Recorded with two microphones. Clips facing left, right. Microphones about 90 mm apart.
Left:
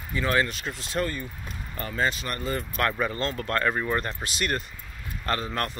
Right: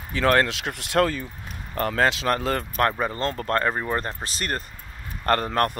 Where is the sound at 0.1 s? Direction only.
70° right (ahead or behind); by 2.6 s 85° right.